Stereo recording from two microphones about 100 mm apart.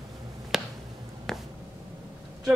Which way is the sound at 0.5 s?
5° right (ahead or behind).